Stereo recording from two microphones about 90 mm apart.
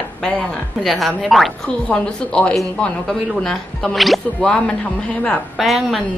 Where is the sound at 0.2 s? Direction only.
5° left (ahead or behind).